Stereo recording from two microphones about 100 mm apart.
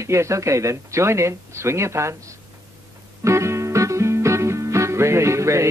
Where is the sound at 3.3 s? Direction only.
30° right (ahead or behind).